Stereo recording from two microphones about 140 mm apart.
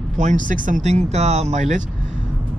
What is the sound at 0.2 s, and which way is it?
Speech, 65° right (ahead or behind).